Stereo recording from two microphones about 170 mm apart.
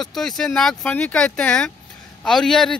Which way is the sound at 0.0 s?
Centre (ahead or behind).